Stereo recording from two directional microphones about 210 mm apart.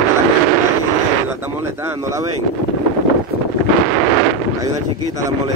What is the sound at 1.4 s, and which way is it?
Speech, 10° right (ahead or behind).